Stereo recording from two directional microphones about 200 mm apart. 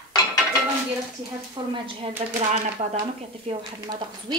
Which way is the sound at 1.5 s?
25° right (ahead or behind).